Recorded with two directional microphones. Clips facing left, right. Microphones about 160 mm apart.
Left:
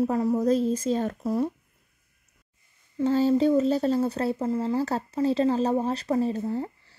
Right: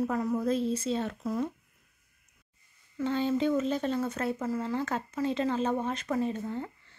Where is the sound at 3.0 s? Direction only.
35° left (ahead or behind).